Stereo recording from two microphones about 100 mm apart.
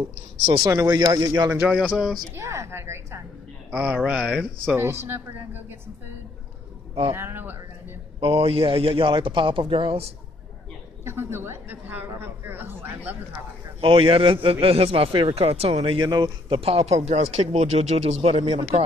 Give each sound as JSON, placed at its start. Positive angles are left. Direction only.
{"t": 0.7, "sound": "speech", "side_deg": -30}
{"t": 1.7, "sound": "speech", "side_deg": -10}
{"t": 2.3, "sound": "speech", "side_deg": -30}
{"t": 3.7, "sound": "speech", "side_deg": -15}
{"t": 4.7, "sound": "speech", "side_deg": -25}
{"t": 7.1, "sound": "speech", "side_deg": -25}
{"t": 8.2, "sound": "a man's voice", "side_deg": -70}
{"t": 11.1, "sound": "speech", "side_deg": -25}
{"t": 13.7, "sound": "a man's voice", "side_deg": -60}
{"t": 16.0, "sound": "a man's voice", "side_deg": -45}
{"t": 16.5, "sound": "speech", "side_deg": -80}